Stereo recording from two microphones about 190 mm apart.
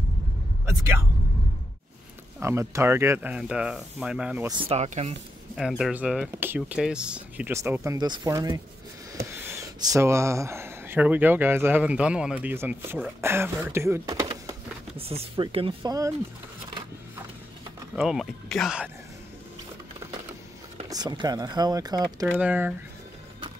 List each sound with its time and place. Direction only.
2.4 s speech: 15° right (ahead or behind)
4.5 s speech: 30° right (ahead or behind)
5.6 s speech: centre (ahead or behind); by 14.6 s 20° right (ahead or behind)
15.0 s speech: 30° right (ahead or behind)
17.9 s speech: 5° right (ahead or behind)
20.9 s speech: 20° right (ahead or behind)
22.3 s speech: 10° right (ahead or behind)